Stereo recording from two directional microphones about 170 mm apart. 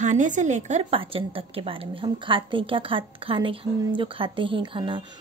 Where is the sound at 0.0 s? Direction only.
45° right (ahead or behind).